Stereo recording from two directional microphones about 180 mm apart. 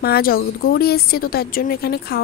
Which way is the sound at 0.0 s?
60° left (ahead or behind).